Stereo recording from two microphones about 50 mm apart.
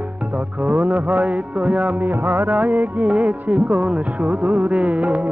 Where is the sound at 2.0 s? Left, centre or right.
Right.